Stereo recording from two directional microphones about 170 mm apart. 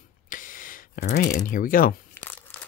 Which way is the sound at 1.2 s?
50° left (ahead or behind).